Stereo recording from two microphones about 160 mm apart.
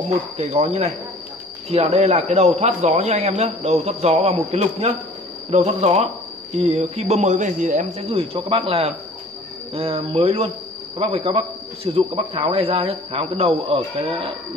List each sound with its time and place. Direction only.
0.4 s a man's voice: 40° right (ahead or behind)